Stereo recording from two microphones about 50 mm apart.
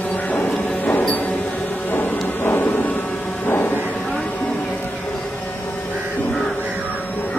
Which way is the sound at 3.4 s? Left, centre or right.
Left.